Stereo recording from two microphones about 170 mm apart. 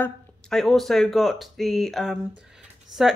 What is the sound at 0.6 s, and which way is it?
A woman's voice, centre (ahead or behind).